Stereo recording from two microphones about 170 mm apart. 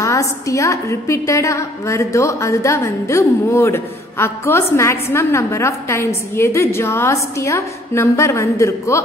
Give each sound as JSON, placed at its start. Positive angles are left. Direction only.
{"t": 0.0, "sound": "a woman's voice", "side_deg": 20}